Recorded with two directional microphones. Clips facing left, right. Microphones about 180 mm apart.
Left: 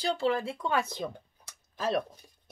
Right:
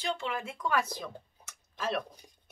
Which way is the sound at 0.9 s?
25° left (ahead or behind).